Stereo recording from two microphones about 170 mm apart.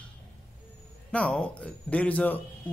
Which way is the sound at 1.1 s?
5° left (ahead or behind).